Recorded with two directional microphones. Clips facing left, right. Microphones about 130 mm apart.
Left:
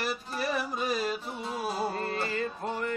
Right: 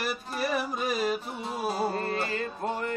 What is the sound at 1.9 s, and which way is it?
Music, 45° right (ahead or behind).